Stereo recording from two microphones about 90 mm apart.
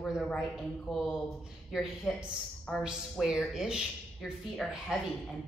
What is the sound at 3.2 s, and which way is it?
A man's voice, 5° right (ahead or behind).